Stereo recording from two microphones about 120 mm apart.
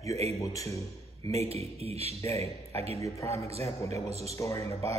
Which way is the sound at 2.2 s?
25° left (ahead or behind).